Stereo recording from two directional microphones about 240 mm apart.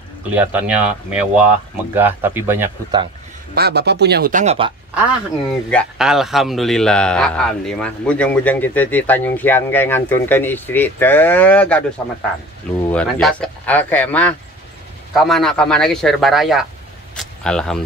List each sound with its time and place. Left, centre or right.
0.3 s speech: centre
3.5 s speech: right
5.7 s speech: centre
12.8 s speech: centre